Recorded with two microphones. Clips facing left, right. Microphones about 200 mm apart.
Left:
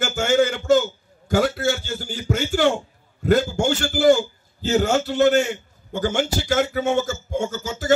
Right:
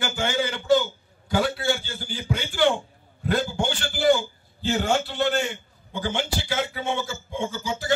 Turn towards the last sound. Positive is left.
turn(degrees=45)  # may be behind; listen again after turning